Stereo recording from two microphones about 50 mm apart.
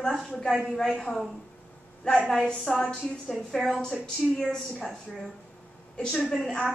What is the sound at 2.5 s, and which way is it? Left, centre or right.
A woman's voice, centre.